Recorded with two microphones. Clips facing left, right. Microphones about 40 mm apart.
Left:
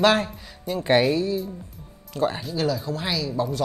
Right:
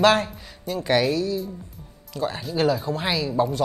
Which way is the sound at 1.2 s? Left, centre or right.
Left.